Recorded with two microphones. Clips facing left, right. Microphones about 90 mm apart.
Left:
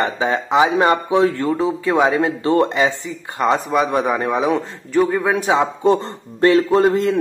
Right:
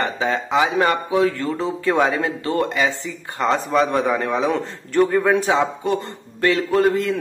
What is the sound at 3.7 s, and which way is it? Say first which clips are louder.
Speech: left 1 dB; 5° left (ahead or behind).